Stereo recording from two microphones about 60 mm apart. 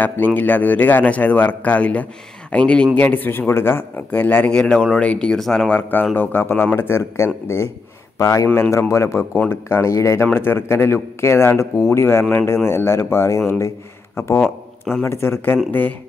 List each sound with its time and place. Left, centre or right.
0.0 s a man's voice: left
3.0 s speech: left
4.5 s a man's voice: centre
5.3 s speech: centre
5.8 s speech: left
8.2 s speech: left
10.3 s speech: left
11.7 s speech: left
14.4 s a sound: centre
15.0 s speech: left